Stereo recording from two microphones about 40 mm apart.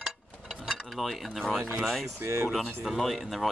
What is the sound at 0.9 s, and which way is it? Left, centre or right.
Speech, centre.